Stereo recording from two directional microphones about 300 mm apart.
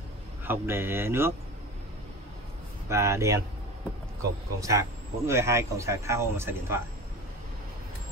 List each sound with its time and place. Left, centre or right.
0.5 s speech: centre
2.9 s speech: centre